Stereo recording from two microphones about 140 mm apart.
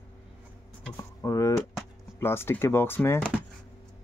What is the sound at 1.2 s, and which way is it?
Speech, 20° left (ahead or behind).